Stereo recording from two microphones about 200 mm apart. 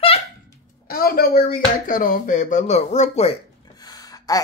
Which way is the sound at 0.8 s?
50° left (ahead or behind).